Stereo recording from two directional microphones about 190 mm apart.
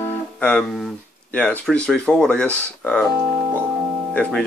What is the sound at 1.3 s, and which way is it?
Speech, 5° left (ahead or behind).